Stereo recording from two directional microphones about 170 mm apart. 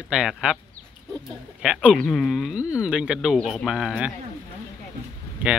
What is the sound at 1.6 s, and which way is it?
Speech, 5° right (ahead or behind).